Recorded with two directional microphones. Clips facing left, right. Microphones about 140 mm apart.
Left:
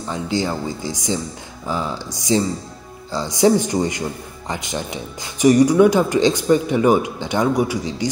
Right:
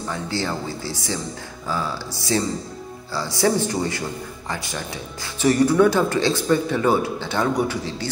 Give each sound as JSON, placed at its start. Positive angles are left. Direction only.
{"t": 0.0, "sound": "speech", "side_deg": 15}